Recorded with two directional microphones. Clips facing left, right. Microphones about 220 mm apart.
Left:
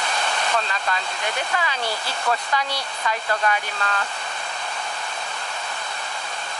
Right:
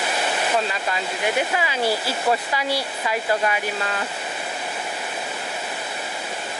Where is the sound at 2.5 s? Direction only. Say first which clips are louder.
Right 2 dB; 5° right (ahead or behind).